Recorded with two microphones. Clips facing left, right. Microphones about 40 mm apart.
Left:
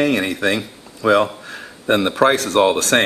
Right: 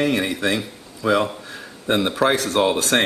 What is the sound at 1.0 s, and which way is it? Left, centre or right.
A man's voice, centre.